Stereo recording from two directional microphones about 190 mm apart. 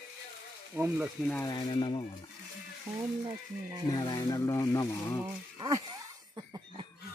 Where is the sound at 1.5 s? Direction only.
25° left (ahead or behind).